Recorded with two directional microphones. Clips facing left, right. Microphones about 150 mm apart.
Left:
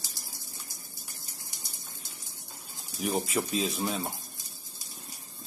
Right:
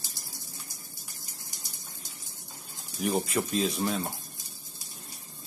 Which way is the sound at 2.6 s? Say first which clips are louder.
Right 2 dB; centre (ahead or behind).